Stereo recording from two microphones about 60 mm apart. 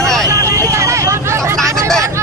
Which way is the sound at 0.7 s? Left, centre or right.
Right.